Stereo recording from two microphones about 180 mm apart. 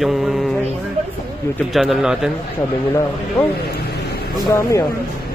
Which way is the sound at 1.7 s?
Centre (ahead or behind).